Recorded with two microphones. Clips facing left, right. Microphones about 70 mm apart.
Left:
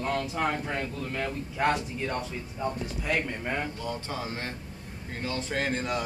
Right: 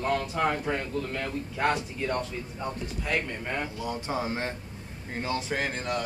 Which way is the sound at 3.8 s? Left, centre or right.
Centre.